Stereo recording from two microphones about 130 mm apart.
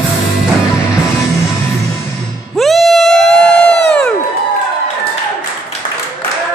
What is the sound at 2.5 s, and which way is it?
Music, centre (ahead or behind).